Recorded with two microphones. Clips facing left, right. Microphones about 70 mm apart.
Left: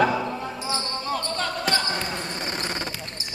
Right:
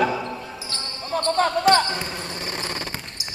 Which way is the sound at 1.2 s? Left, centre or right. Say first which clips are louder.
Right 7 dB; right.